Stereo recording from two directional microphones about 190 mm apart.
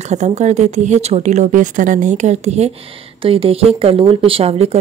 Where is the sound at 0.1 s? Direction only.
35° right (ahead or behind).